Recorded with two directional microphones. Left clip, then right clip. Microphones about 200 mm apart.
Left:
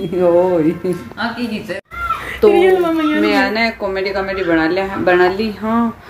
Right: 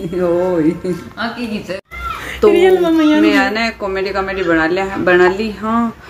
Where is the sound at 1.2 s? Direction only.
15° right (ahead or behind).